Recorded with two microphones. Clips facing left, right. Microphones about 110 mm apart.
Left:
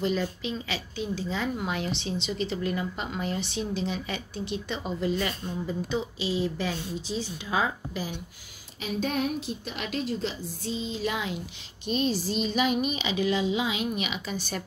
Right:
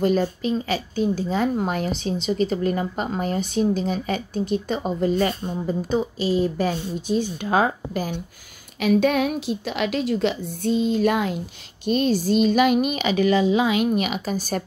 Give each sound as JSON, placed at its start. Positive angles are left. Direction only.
{"t": 0.0, "sound": "speech", "side_deg": -45}
{"t": 8.7, "sound": "a woman's voice", "side_deg": -75}